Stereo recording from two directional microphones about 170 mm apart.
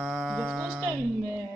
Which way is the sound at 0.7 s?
15° right (ahead or behind).